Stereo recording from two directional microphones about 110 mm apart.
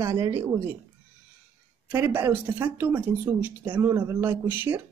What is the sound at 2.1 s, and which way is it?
Speech, 20° right (ahead or behind).